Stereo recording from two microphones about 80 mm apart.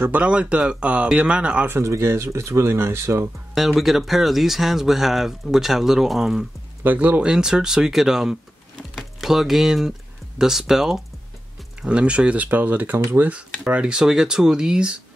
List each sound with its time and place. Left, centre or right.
0.0 s speech: centre
1.7 s speech: right
3.5 s speech: centre
6.8 s speech: right
13.7 s speech: centre